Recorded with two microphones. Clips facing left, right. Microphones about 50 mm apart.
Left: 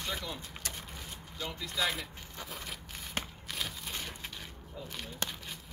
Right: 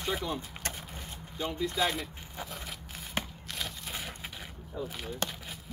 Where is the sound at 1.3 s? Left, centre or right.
Right.